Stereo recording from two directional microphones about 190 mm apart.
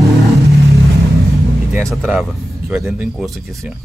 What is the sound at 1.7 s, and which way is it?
Speech, 5° right (ahead or behind).